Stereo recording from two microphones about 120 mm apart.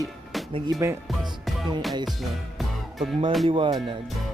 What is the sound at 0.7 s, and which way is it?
Speech, 25° right (ahead or behind).